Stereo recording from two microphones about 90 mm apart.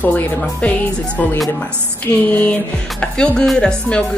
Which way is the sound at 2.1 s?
30° left (ahead or behind).